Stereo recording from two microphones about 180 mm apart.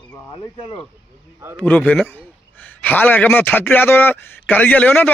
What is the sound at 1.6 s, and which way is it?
A man's voice, 5° left (ahead or behind).